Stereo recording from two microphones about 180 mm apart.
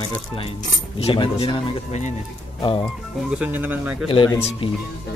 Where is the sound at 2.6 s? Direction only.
25° left (ahead or behind).